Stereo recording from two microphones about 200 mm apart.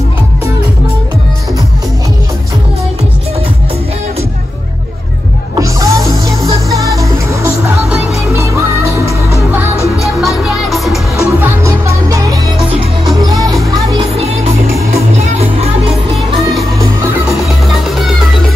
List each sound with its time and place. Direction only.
5.6 s music: 15° right (ahead or behind)
9.9 s music: centre (ahead or behind)
11.2 s music: 15° right (ahead or behind)
13.6 s music: 25° right (ahead or behind)